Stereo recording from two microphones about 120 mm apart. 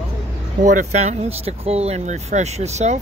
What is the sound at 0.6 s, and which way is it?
Speech, 90° right.